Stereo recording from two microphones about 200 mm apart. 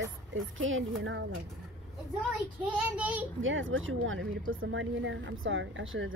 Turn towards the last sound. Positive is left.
turn(degrees=-70)  # may be behind; listen again after turning